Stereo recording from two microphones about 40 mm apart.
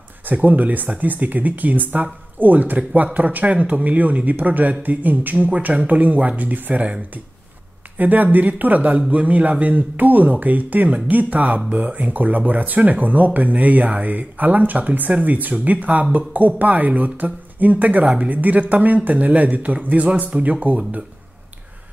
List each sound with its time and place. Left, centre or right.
0.3 s speech: right
8.0 s speech: right
18.0 s a woman's voice: right
18.3 s speech: right